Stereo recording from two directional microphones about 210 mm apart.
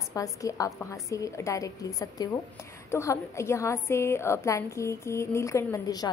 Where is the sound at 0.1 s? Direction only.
15° left (ahead or behind).